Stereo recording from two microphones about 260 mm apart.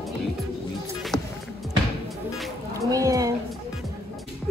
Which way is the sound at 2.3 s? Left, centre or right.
Centre.